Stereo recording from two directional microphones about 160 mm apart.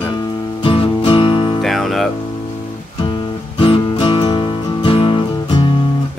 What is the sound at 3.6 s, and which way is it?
Music, 35° left (ahead or behind).